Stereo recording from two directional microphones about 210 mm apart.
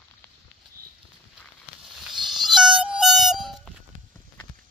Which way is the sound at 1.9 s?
Centre (ahead or behind).